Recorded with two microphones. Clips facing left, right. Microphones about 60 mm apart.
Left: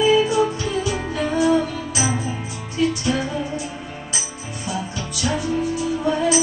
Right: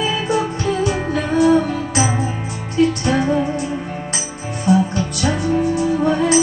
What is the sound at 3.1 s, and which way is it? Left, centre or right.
Music, right.